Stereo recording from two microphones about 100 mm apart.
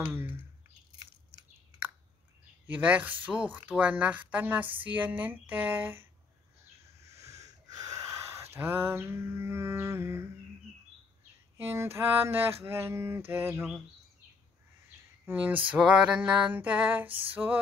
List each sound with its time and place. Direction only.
0.0 s typing: 25° right (ahead or behind)
2.6 s speech: 15° right (ahead or behind)
7.2 s a sound: 35° right (ahead or behind)
11.7 s mantra: 25° right (ahead or behind)
15.2 s speech: 15° right (ahead or behind)